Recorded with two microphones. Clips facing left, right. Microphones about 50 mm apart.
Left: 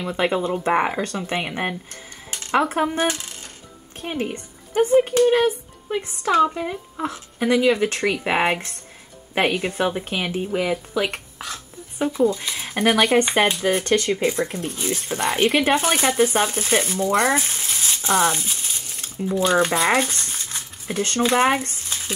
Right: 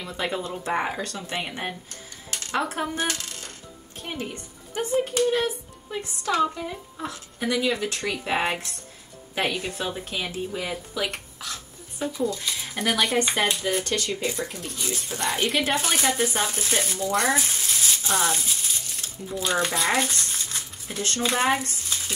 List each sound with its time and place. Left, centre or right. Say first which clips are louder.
0.0 s speech: left 7 dB; left
7.3 s speech: left 7 dB; left
12.5 s speech: left 6 dB; left
17.6 s frying: left 1 dB; left
18.3 s stir: left 1 dB; left
19.7 s speech: left 5 dB; left
20.0 s cutlery: left 2 dB; left
20.9 s speech: left 6 dB; left